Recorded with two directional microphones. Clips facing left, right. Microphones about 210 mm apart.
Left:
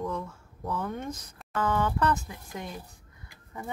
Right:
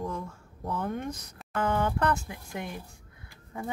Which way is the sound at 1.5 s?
25° right (ahead or behind).